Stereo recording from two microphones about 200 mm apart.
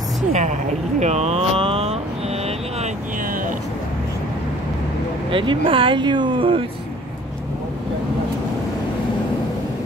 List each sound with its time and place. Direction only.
0.3 s speech: 35° right (ahead or behind)
5.3 s speech: 25° right (ahead or behind)